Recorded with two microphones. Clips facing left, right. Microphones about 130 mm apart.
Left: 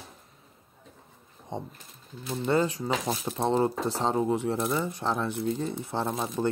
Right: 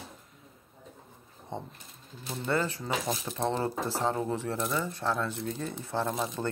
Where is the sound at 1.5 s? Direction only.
15° left (ahead or behind).